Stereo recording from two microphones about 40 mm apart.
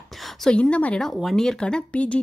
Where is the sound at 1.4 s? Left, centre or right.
Centre.